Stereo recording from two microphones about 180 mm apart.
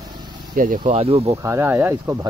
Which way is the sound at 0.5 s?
50° right (ahead or behind).